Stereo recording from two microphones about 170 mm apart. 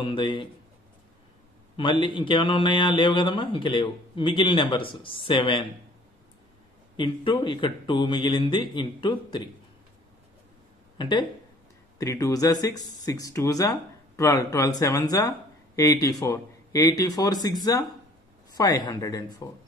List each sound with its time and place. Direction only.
0.0 s speech: 30° left (ahead or behind)
1.8 s speech: 30° left (ahead or behind)
7.0 s speech: 30° left (ahead or behind)
11.0 s speech: 25° left (ahead or behind)